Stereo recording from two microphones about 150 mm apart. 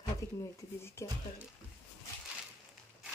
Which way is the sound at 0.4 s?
20° left (ahead or behind).